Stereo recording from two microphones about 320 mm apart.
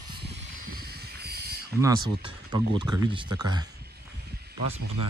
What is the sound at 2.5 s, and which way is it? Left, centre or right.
Speech, centre.